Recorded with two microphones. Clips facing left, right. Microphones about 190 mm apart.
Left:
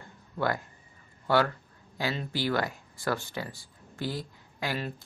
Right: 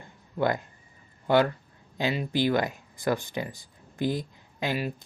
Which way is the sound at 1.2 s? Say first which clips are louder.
Right 3 dB; 20° right (ahead or behind).